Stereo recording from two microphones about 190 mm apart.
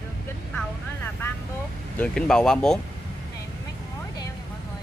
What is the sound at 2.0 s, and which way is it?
Speech, 5° left (ahead or behind).